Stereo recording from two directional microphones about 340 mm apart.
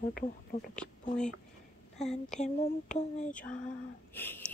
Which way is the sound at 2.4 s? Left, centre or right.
Left.